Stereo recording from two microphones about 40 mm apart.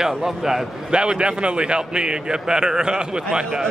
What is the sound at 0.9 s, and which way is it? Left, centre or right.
A man's voice, right.